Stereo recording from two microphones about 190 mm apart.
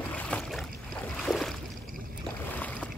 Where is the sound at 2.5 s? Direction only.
10° left (ahead or behind).